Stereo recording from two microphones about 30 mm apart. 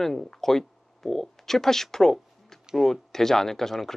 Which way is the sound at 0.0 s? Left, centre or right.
Centre.